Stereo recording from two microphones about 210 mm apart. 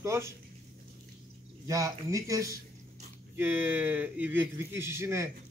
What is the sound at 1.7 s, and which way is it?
A man's voice, 15° right (ahead or behind).